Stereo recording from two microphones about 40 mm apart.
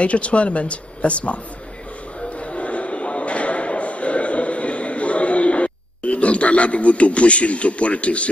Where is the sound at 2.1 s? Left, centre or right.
Left.